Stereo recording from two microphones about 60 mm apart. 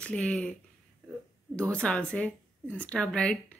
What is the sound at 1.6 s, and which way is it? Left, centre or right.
Speech, centre.